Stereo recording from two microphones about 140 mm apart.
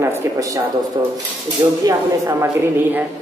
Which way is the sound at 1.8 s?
20° right (ahead or behind).